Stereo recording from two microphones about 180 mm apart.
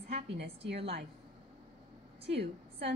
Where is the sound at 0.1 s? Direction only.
65° right (ahead or behind).